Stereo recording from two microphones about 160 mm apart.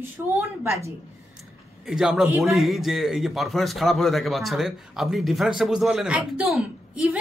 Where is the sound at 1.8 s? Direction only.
5° right (ahead or behind).